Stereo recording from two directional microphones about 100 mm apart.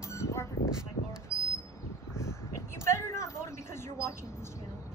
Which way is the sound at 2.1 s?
30° left (ahead or behind).